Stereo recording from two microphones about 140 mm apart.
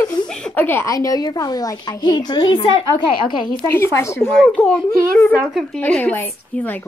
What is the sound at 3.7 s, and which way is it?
Speech, 20° left (ahead or behind).